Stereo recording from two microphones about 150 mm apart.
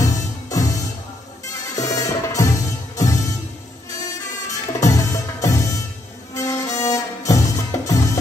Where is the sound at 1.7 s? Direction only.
20° left (ahead or behind).